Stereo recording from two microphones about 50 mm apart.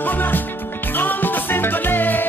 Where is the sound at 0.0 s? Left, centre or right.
Left.